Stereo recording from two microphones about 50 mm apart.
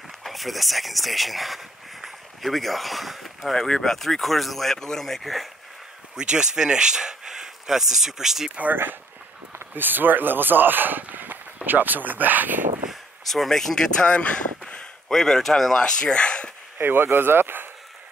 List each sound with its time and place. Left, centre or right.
0.2 s speech: centre
6.1 s speech: centre
9.8 s speech: right
13.3 s speech: centre
15.0 s speech: centre
15.8 s speech: centre
16.7 s speech: right